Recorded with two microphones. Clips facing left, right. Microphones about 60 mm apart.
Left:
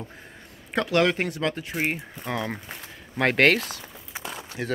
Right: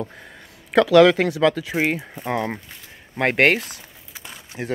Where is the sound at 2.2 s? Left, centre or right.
Right.